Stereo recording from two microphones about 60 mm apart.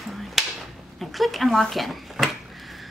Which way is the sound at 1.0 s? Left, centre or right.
Centre.